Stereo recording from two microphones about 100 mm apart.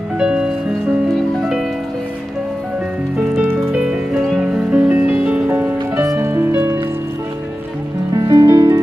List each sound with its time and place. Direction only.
0.2 s music: 10° right (ahead or behind)
3.2 s music: 15° right (ahead or behind)
8.1 s music: 40° right (ahead or behind)